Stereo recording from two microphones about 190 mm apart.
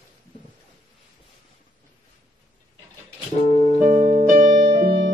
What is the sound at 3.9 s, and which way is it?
Music, 35° right (ahead or behind).